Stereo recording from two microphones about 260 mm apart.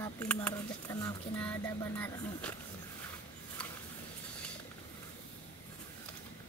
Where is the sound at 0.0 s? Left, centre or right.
Centre.